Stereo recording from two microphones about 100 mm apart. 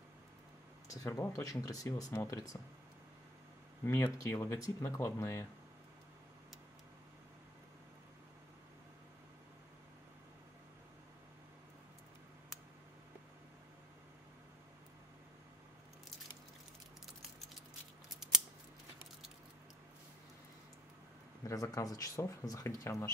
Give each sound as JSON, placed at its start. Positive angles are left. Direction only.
{"t": 1.0, "sound": "speech", "side_deg": 35}
{"t": 3.8, "sound": "speech", "side_deg": 25}
{"t": 21.5, "sound": "speech", "side_deg": 35}